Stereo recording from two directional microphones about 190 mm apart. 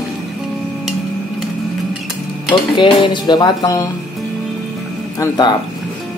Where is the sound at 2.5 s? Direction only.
25° left (ahead or behind).